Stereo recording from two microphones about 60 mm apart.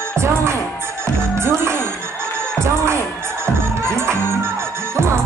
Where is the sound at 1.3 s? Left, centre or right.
Right.